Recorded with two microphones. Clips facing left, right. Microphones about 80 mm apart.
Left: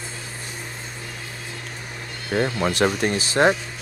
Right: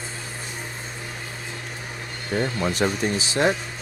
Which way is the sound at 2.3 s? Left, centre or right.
Left.